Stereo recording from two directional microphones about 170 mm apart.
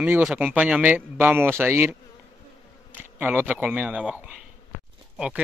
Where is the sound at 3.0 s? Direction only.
10° right (ahead or behind).